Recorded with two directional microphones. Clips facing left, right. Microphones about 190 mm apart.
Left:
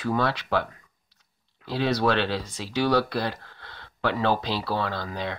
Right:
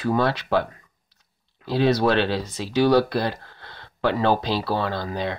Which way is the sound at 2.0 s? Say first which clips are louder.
Right 3 dB; 45° right (ahead or behind).